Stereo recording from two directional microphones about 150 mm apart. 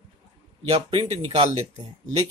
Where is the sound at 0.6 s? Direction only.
40° right (ahead or behind).